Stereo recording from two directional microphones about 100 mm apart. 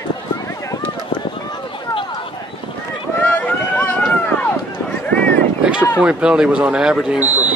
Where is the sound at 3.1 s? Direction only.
15° left (ahead or behind).